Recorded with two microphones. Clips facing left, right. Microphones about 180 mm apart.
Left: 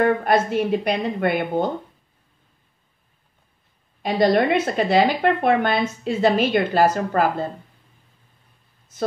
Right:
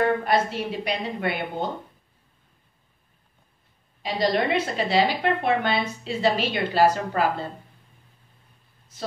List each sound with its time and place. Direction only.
0.0 s speech: 50° left (ahead or behind)
4.0 s speech: 50° left (ahead or behind)